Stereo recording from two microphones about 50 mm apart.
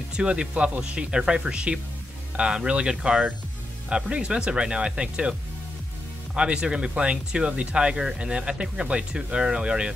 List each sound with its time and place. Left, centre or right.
0.1 s speech: centre
6.3 s speech: centre